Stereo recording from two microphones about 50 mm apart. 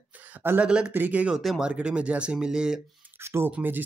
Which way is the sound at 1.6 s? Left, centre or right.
Right.